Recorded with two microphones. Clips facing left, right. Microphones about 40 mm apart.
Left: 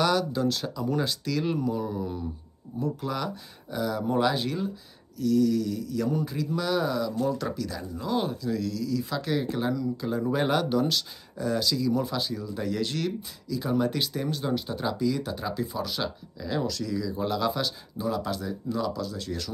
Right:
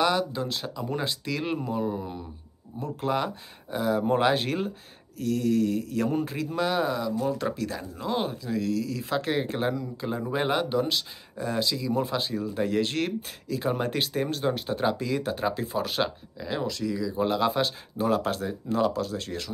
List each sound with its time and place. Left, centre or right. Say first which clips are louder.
0.0 s speech: left 1 dB; centre
2.8 s speech: right 2 dB; right
7.5 s speech: right 1 dB; right
16.3 s speech: left 1 dB; right